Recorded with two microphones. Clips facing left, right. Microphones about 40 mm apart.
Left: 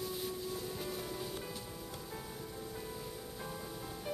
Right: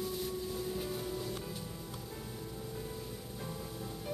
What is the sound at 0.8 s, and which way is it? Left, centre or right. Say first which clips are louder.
Music: right 2 dB; centre.